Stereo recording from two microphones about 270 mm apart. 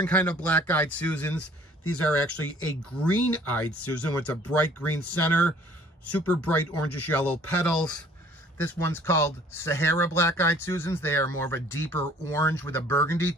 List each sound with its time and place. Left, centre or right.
0.0 s speech: centre
1.4 s speech: left
3.0 s speech: centre
3.6 s speech: left
4.5 s speech: centre
6.6 s speech: left
7.1 s speech: centre